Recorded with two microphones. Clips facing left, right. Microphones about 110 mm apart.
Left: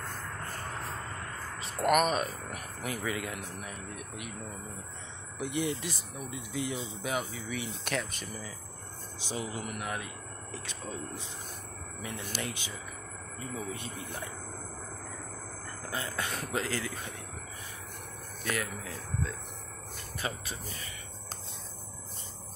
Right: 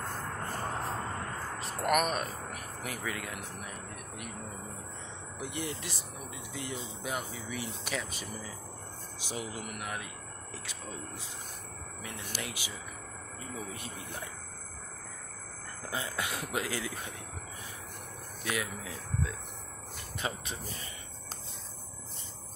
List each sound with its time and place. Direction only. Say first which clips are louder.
1.6 s speech: left 3 dB; centre (ahead or behind)
5.4 s speech: left 6 dB; centre (ahead or behind)
12.3 s speech: left 2 dB; 10° right (ahead or behind)
15.9 s speech: even; 15° right (ahead or behind)
18.4 s speech: left 1 dB; 15° right (ahead or behind)